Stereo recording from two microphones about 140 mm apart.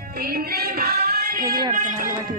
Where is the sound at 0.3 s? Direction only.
90° right.